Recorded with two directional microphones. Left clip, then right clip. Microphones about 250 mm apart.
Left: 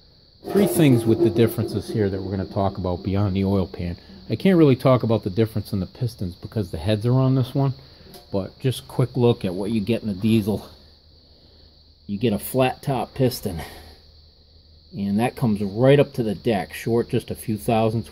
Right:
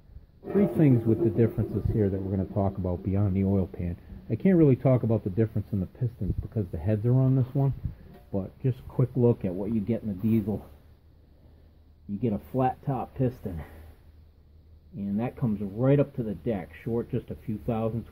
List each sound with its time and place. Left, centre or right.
0.7 s speech: centre
2.8 s speech: centre
12.2 s speech: centre
15.0 s speech: left